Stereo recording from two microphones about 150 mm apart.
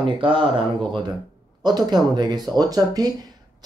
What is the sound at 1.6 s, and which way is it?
Speech, 30° right (ahead or behind).